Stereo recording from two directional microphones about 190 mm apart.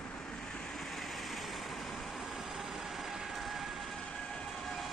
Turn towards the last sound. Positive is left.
turn(degrees=0)  # may be behind; listen again after turning